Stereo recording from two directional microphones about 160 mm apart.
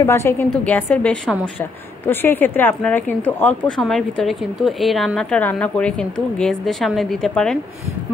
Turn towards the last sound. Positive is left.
turn(degrees=5)  # may be behind; listen again after turning